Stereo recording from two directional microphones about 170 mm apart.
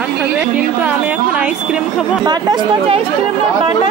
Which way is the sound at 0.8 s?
10° right (ahead or behind).